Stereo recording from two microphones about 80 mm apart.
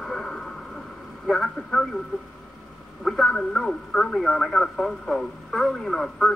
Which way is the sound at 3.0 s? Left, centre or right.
Centre.